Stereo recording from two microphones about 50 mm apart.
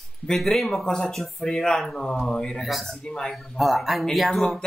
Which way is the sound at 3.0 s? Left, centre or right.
Centre.